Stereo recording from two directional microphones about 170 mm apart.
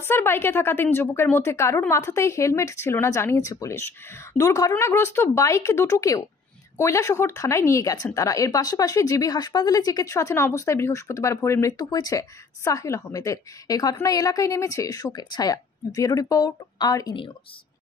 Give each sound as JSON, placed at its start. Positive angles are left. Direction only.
{"t": 0.0, "sound": "a woman's voice", "side_deg": 15}